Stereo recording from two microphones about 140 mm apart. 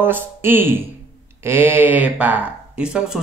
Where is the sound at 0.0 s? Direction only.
15° right (ahead or behind).